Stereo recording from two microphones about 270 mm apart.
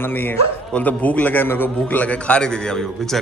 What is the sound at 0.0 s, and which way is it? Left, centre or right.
A man's voice, centre.